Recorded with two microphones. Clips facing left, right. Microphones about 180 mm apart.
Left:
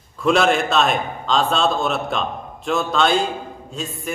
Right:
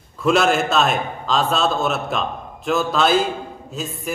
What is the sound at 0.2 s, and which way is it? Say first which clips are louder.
A man's voice: even; centre (ahead or behind).